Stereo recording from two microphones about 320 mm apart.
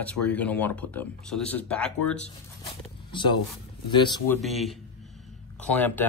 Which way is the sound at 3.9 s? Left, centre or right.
Centre.